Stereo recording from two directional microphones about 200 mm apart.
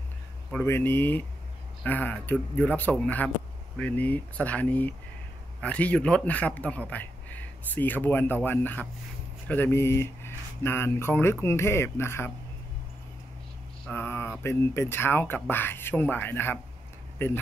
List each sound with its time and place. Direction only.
0.5 s speech: 10° left (ahead or behind)
13.8 s speech: 10° left (ahead or behind)